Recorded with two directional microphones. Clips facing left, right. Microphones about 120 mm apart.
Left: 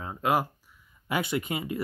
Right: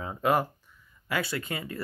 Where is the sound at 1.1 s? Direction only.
20° left (ahead or behind).